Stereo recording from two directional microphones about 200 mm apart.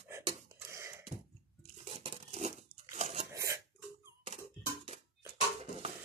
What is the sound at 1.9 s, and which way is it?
Crumpling, 30° right (ahead or behind).